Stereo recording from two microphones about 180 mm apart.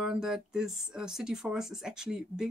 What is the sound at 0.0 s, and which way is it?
Speech, 5° right (ahead or behind).